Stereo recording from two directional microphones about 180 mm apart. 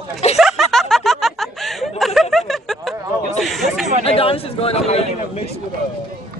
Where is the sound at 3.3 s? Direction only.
Centre (ahead or behind).